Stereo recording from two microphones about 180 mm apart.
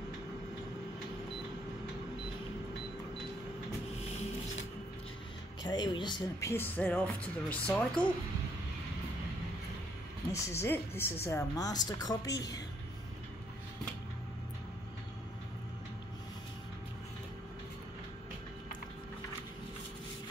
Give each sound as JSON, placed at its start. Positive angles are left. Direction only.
{"t": 5.6, "sound": "a woman's voice", "side_deg": 25}
{"t": 6.5, "sound": "speech", "side_deg": 10}
{"t": 10.3, "sound": "a woman's voice", "side_deg": 15}